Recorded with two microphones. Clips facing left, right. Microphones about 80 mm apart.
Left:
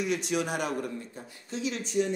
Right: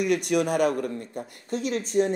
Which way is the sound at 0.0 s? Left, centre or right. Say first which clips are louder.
Right 6 dB; right.